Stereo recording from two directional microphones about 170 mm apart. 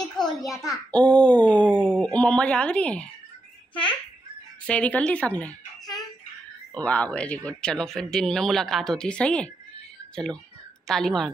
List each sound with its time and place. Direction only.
0.2 s a sound: 25° left (ahead or behind)
0.9 s speech: 5° left (ahead or behind)
4.6 s speech: 5° left (ahead or behind)
6.7 s speech: 5° left (ahead or behind)